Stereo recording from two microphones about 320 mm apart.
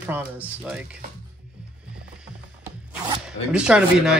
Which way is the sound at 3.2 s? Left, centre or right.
Centre.